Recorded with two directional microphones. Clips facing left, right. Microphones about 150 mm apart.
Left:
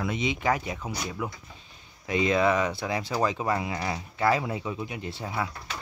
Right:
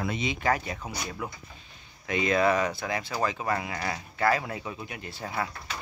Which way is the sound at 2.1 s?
25° left (ahead or behind).